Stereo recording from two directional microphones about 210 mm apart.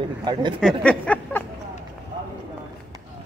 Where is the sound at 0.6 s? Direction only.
5° left (ahead or behind).